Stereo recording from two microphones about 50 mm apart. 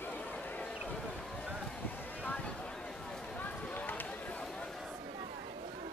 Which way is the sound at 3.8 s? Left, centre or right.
Left.